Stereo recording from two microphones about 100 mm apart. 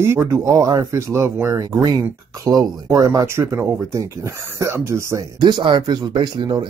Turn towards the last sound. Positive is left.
turn(degrees=-55)  # may be behind; listen again after turning